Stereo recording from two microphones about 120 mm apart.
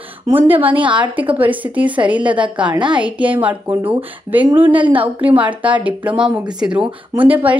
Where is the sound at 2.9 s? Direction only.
10° right (ahead or behind).